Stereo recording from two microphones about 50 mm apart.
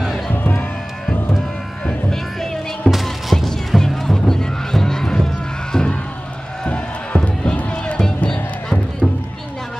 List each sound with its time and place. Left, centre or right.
0.3 s music: left
1.9 s music: centre; by 8.3 s left
8.3 s music: centre